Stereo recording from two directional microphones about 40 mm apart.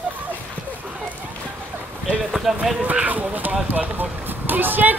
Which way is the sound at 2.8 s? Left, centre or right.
Right.